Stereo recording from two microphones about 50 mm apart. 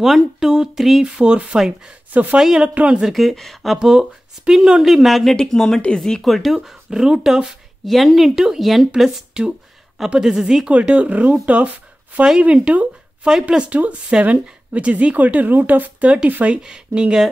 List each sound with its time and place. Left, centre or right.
0.0 s speech: centre
1.0 s speech: right
2.7 s speech: right
3.1 s speech: centre
3.7 s speech: centre
5.3 s speech: centre
6.2 s speech: centre
7.8 s speech: centre
9.4 s speech: centre
10.7 s speech: right
13.7 s speech: right
16.6 s speech: centre